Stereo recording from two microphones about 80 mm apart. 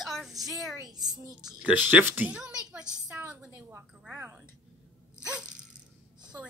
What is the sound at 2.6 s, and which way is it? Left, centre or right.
Speech, centre.